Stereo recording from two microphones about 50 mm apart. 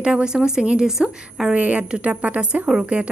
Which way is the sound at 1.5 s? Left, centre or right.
Right.